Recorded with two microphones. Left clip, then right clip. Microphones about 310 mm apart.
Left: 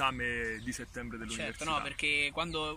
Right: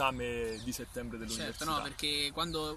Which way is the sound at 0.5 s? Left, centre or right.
Centre.